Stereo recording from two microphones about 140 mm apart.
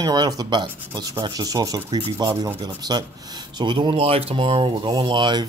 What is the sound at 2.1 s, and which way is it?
Speech, 25° right (ahead or behind).